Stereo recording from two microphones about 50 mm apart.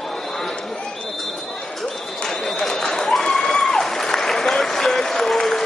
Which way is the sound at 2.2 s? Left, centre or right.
Centre.